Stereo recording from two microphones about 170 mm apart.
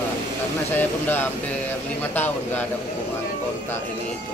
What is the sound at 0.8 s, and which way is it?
Speech, 10° left (ahead or behind).